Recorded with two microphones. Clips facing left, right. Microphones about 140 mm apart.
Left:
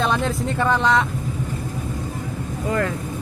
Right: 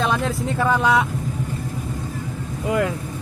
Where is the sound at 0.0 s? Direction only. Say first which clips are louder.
Even; 5° right (ahead or behind).